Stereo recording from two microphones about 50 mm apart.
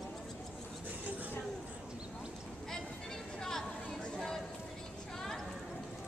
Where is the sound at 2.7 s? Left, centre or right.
Centre.